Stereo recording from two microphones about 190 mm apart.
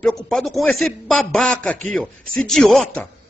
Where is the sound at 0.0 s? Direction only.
Centre (ahead or behind).